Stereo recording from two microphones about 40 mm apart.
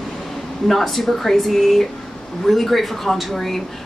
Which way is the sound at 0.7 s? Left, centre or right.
Centre.